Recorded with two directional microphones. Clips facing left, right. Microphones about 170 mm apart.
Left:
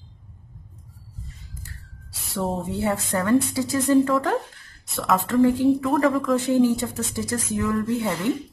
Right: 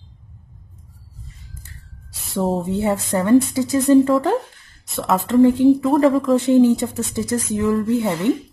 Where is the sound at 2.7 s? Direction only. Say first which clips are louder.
Right 4 dB; 20° right (ahead or behind).